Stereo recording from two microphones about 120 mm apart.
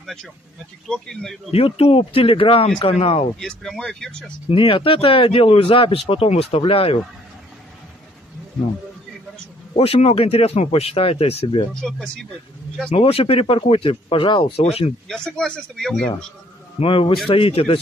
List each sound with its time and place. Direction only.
0.0 s a man's voice: 5° left (ahead or behind)
1.5 s speech: 55° left (ahead or behind)
3.3 s a man's voice: 5° left (ahead or behind)
4.5 s speech: 50° left (ahead or behind)
9.8 s speech: 55° left (ahead or behind)
11.8 s a man's voice: centre (ahead or behind)
12.9 s speech: 55° left (ahead or behind)
14.6 s speech: 55° left (ahead or behind)
15.0 s a man's voice: 5° left (ahead or behind)
16.8 s speech: 45° left (ahead or behind)